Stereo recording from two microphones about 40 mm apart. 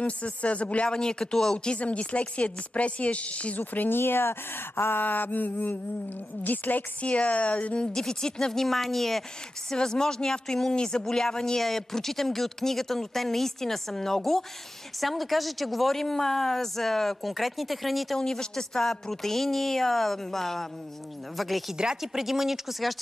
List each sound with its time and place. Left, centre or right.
0.0 s speech: left
0.9 s speech: centre
1.7 s speech: left
3.5 s mantra: left
4.0 s speech: left
5.0 s mantra: left
7.0 s speech: left
7.9 s speech: centre
9.7 s speech: centre
18.1 s speech: centre